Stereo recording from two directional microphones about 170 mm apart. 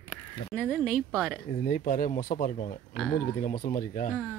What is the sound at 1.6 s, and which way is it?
Speech, 55° left (ahead or behind).